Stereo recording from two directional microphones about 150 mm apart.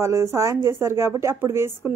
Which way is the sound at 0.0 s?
20° right (ahead or behind).